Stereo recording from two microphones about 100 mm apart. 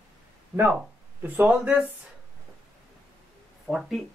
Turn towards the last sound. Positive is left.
turn(degrees=0)  # may be behind; listen again after turning